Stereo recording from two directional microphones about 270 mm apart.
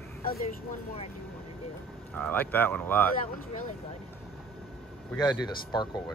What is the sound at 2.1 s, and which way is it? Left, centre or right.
Speech, centre.